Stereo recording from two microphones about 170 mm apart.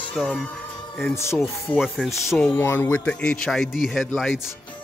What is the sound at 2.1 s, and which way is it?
A man's voice, 15° left (ahead or behind).